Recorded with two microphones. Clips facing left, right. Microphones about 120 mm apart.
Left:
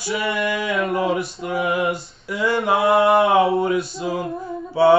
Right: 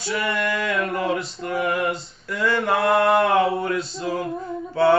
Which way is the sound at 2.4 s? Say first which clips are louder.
Left 2 dB; 25° left (ahead or behind).